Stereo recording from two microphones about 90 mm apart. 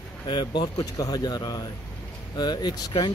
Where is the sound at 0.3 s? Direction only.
60° left (ahead or behind).